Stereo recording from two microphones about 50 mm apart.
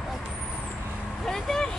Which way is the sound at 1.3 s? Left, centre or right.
Centre.